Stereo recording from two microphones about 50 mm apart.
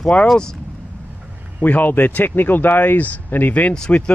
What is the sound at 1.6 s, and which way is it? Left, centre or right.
Speech, left.